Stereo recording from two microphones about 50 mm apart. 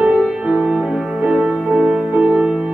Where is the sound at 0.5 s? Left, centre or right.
Centre.